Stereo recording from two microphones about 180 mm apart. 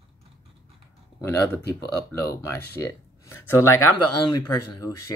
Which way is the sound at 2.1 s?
15° left (ahead or behind).